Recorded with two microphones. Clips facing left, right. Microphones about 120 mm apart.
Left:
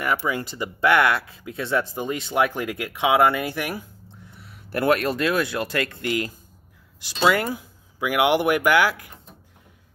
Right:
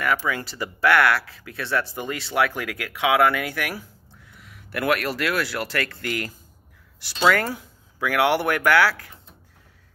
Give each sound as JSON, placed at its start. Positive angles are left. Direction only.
{"t": 0.0, "sound": "speech", "side_deg": 20}